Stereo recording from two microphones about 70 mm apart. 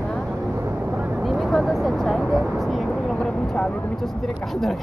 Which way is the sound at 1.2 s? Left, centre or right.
Centre.